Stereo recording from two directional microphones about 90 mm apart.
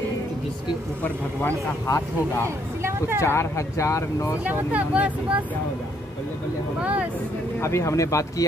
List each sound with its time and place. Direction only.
1.9 s speech: 35° left (ahead or behind)
4.5 s speech: 15° right (ahead or behind)
6.8 s speech: 15° right (ahead or behind)
7.6 s speech: 30° left (ahead or behind)